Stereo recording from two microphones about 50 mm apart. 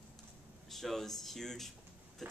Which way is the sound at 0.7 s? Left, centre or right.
Centre.